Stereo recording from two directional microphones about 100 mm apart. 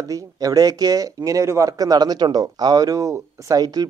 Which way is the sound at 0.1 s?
35° right (ahead or behind).